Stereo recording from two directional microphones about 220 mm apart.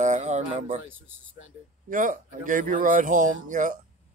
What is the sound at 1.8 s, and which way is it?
Speech, 35° right (ahead or behind).